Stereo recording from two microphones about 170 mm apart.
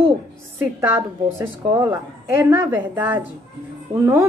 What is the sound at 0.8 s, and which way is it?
A woman's voice, 15° right (ahead or behind).